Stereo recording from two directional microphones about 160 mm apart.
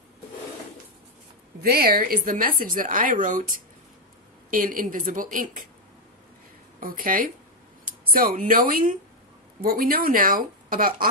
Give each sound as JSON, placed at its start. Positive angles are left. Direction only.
{"t": 1.6, "sound": "a woman's voice", "side_deg": -70}
{"t": 6.8, "sound": "a woman's voice", "side_deg": -60}